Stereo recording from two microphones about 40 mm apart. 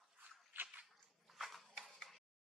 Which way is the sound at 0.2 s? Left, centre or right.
Right.